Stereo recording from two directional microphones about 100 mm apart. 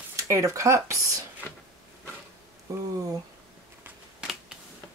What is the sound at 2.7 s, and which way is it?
Speech, 35° right (ahead or behind).